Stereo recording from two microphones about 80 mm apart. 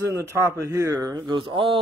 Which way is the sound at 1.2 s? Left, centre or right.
Right.